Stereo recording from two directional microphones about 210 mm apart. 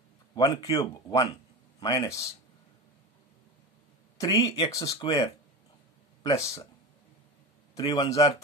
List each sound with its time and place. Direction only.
0.4 s speech: 20° left (ahead or behind)
4.2 s speech: 15° left (ahead or behind)
7.7 s speech: 20° left (ahead or behind)